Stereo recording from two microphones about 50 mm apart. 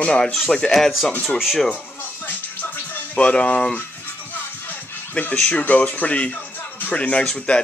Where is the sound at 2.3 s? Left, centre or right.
Left.